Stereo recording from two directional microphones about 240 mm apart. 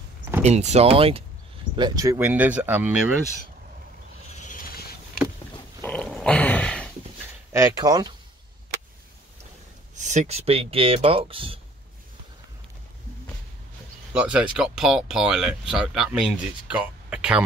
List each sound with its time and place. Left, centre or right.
0.4 s speech: right; by 3.1 s centre
4.4 s vehicle: left
5.8 s dog: centre
7.5 s speech: centre
9.9 s speech: right
14.1 s speech: centre